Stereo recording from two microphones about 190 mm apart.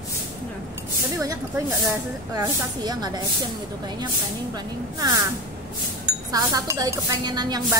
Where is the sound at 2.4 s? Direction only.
20° right (ahead or behind).